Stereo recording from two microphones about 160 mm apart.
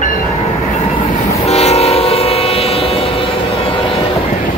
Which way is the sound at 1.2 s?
40° left (ahead or behind).